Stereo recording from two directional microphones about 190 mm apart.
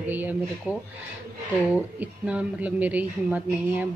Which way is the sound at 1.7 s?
10° right (ahead or behind).